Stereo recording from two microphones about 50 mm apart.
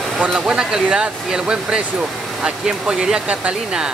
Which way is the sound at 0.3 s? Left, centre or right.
Centre.